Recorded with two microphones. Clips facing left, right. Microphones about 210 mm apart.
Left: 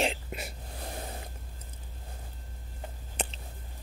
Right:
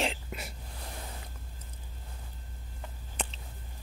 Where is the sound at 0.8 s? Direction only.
40° left (ahead or behind).